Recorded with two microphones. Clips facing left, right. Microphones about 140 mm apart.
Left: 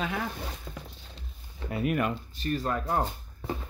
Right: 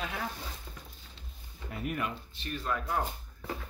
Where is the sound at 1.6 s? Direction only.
85° left.